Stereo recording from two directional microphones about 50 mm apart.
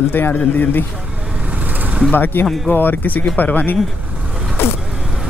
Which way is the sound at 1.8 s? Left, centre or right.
Right.